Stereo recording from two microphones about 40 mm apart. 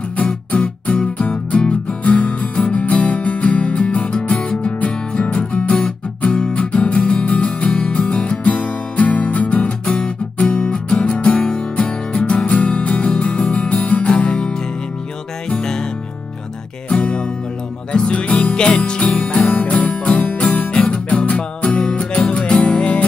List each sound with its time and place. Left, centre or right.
0.3 s music: left
14.2 s music: left
17.9 s music: left
18.5 s jingle bell: left
19.5 s music: left